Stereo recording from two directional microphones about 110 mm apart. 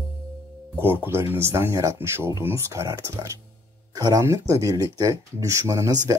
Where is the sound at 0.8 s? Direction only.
20° right (ahead or behind).